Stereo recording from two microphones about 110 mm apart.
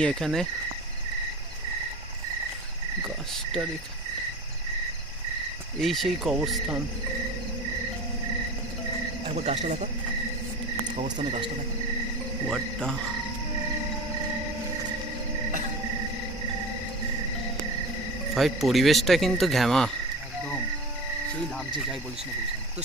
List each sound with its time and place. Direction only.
0.0 s speech: 5° left (ahead or behind)
5.8 s speech: centre (ahead or behind)
9.3 s speech: 90° right
12.4 s speech: 5° left (ahead or behind)
18.3 s speech: centre (ahead or behind)